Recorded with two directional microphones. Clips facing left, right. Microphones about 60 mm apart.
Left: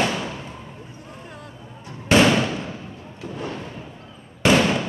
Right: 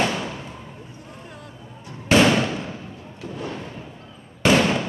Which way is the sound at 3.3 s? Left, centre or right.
Left.